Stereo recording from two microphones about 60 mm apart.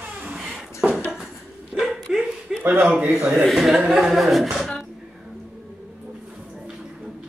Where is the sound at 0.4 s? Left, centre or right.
Centre.